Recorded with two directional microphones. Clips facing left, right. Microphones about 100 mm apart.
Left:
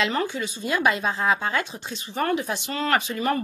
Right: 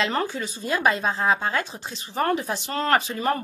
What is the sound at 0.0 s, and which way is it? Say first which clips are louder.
Speech: even; 40° right (ahead or behind).